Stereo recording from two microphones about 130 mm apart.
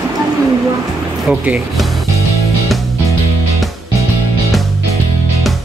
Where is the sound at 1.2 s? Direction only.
5° right (ahead or behind).